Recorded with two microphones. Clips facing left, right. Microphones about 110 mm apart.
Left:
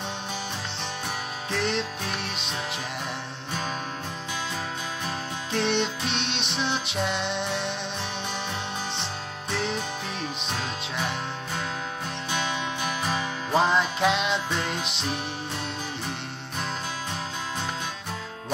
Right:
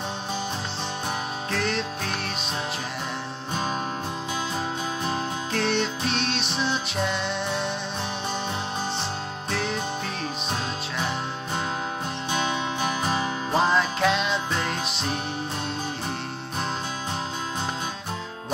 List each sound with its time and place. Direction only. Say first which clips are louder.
5.5 s music: left 1 dB; 20° left (ahead or behind)
12.3 s music: right 3 dB; 30° right (ahead or behind)
13.5 s music: even; 15° left (ahead or behind)